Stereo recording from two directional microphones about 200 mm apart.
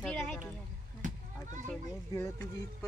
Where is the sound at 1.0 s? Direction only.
40° right (ahead or behind).